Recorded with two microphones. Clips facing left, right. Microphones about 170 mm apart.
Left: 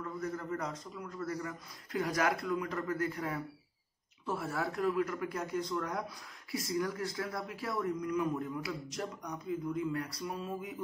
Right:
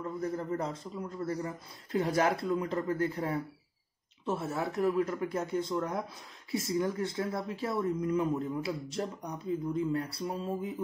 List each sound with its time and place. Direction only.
0.0 s speech: 30° right (ahead or behind)